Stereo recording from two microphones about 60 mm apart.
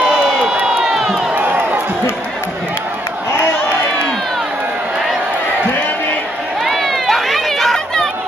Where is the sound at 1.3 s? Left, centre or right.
Right.